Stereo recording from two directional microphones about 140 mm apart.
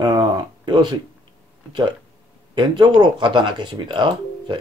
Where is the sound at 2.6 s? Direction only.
30° right (ahead or behind).